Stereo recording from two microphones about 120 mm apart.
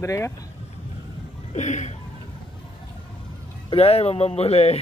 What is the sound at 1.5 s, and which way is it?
Speech, 80° left.